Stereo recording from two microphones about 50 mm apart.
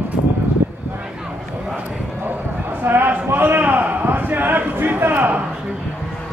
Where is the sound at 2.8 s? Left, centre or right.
Right.